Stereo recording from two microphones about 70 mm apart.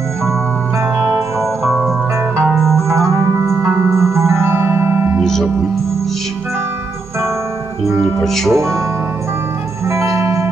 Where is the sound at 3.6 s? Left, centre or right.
Right.